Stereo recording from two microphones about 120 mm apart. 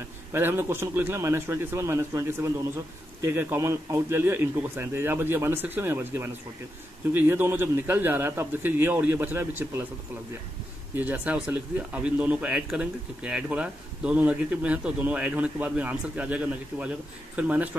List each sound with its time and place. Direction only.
0.3 s speech: 20° right (ahead or behind)
11.0 s speech: 15° right (ahead or behind)